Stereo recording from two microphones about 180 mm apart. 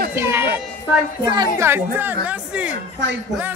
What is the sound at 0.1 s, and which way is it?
A child's voice, 15° right (ahead or behind).